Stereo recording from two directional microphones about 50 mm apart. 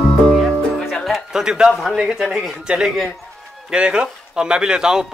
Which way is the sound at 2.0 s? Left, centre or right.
Centre.